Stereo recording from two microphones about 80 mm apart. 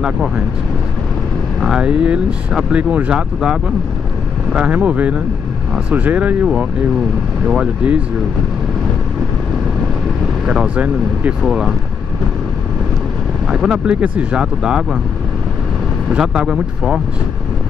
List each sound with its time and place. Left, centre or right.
1.6 s speech: centre
10.4 s speech: centre
13.5 s speech: centre
16.1 s speech: centre